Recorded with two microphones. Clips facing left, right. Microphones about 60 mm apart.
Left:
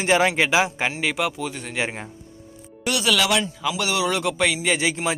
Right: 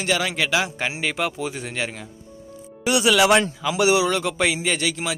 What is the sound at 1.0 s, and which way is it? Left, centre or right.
Speech, centre.